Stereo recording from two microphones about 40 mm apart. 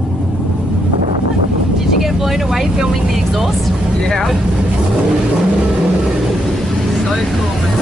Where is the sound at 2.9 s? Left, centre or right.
Centre.